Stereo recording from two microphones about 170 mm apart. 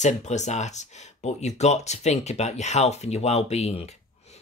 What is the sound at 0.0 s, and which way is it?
Speech, 45° left (ahead or behind).